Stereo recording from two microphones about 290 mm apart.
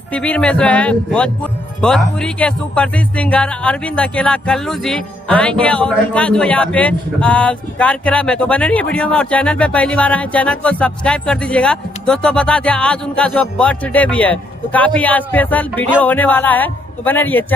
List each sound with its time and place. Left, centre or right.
0.1 s music: centre